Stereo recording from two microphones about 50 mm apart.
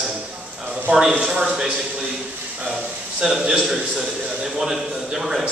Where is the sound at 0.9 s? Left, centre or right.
Right.